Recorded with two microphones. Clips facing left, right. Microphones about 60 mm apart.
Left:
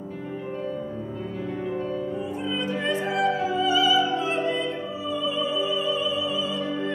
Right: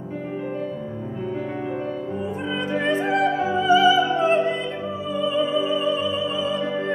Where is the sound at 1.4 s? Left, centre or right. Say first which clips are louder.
Right 2 dB; right.